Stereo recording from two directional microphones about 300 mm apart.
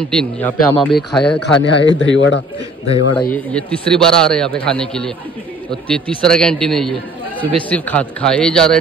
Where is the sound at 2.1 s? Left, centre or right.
Left.